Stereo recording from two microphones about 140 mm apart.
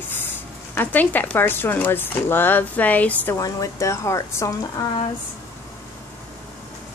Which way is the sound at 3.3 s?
25° left (ahead or behind).